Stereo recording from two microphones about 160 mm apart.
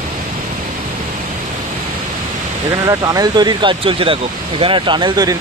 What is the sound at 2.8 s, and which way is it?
Speech, 25° right (ahead or behind).